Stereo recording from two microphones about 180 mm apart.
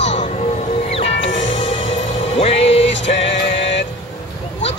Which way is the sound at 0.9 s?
35° left (ahead or behind).